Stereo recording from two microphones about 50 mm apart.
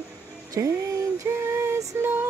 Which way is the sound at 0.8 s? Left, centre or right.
Right.